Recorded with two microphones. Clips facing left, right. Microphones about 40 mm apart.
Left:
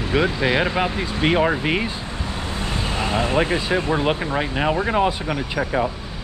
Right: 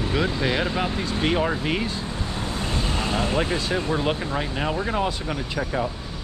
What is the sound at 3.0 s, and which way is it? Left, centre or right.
Speech, left.